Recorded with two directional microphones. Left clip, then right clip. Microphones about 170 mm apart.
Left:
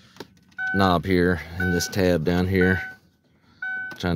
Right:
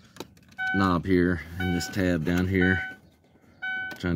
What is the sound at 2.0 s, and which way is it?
Speech, 55° left (ahead or behind).